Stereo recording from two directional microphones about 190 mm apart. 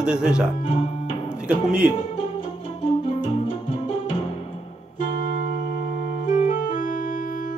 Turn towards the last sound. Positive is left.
turn(degrees=45)  # may be behind; listen again after turning